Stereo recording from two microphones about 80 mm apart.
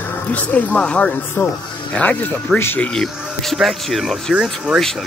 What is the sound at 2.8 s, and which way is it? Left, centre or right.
Speech, centre.